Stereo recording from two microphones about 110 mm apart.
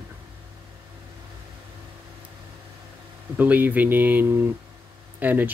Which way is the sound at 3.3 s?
15° right (ahead or behind).